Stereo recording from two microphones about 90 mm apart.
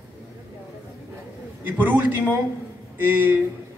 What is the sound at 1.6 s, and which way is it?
A man's voice, 20° right (ahead or behind).